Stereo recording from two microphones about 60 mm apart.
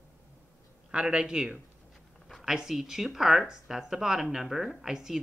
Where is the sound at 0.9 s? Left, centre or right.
Centre.